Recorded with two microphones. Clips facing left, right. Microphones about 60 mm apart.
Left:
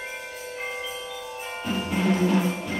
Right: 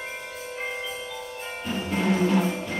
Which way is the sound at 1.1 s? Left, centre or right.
Centre.